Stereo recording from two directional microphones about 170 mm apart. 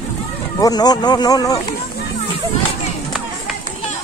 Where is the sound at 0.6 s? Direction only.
25° left (ahead or behind).